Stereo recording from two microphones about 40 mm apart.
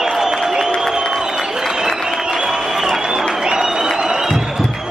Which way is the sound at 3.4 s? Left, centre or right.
Centre.